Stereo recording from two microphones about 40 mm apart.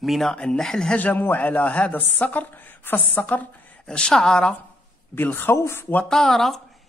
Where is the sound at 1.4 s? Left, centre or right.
Left.